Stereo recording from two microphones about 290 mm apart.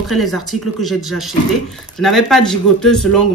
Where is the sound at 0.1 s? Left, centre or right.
Centre.